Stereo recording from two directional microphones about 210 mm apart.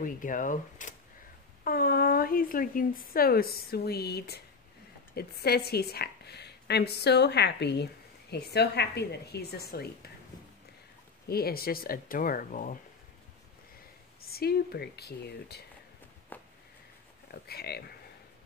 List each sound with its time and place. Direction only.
0.0 s a woman's voice: 40° left (ahead or behind)
11.2 s a woman's voice: 45° left (ahead or behind)
14.2 s a woman's voice: 45° left (ahead or behind)
16.3 s a sound: 10° left (ahead or behind)
17.3 s a woman's voice: 50° left (ahead or behind)